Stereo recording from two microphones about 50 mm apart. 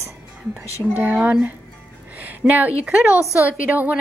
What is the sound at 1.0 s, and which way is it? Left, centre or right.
A woman's voice, right.